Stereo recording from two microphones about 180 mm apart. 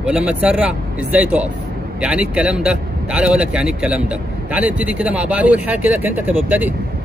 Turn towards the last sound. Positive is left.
turn(degrees=-10)  # may be behind; listen again after turning